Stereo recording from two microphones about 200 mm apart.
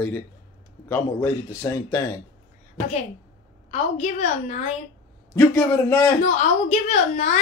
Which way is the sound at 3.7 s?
35° left (ahead or behind).